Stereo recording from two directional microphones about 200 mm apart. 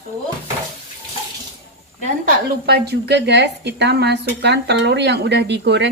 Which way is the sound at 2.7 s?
55° right (ahead or behind).